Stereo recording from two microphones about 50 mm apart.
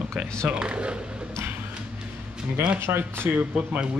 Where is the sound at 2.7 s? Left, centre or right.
Right.